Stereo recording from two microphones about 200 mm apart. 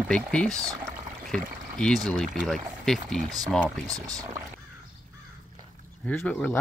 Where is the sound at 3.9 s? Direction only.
15° right (ahead or behind).